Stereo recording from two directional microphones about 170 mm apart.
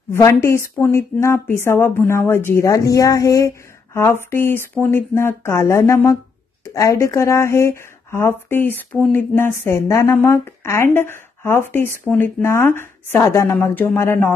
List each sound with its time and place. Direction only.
0.1 s speech: 15° left (ahead or behind)